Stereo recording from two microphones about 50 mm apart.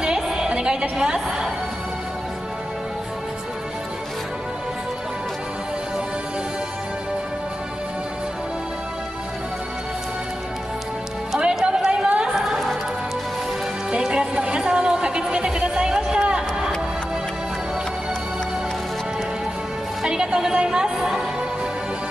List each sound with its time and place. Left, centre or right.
0.0 s a sound: centre
11.3 s music: centre
14.0 s music: centre
20.0 s music: centre